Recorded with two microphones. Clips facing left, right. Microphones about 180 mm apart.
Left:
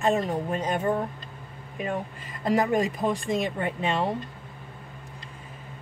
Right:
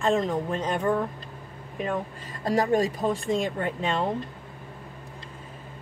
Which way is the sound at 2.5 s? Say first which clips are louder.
Right 2 dB; 35° right (ahead or behind).